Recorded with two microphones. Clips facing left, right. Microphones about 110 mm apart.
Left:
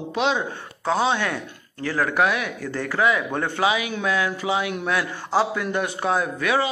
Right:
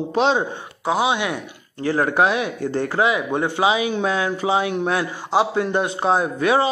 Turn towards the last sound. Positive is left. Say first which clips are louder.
# right 4 dB
turn(degrees=-30)  # may be behind; listen again after turning